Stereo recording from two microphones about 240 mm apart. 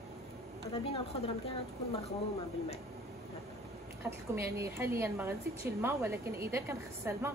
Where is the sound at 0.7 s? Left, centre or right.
Left.